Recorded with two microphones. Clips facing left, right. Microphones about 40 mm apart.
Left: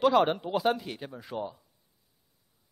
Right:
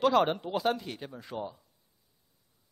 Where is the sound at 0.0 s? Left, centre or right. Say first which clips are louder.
Left 2 dB; centre.